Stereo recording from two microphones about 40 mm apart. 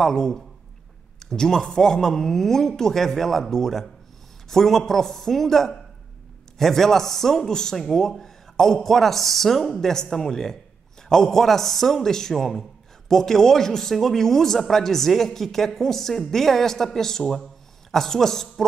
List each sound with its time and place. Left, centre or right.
0.0 s a man's voice: centre